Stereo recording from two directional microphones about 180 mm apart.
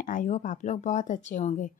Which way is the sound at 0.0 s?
45° left (ahead or behind).